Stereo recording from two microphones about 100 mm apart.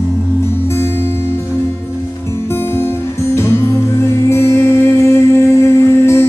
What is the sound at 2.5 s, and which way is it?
Music, 25° left (ahead or behind).